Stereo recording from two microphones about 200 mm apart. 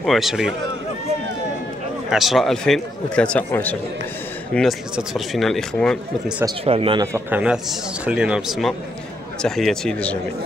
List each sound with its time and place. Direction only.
0.0 s speech: centre (ahead or behind)
2.0 s speech: centre (ahead or behind)
6.6 s speech: 30° right (ahead or behind)
7.1 s speech: 10° right (ahead or behind); by 10.1 s 5° left (ahead or behind)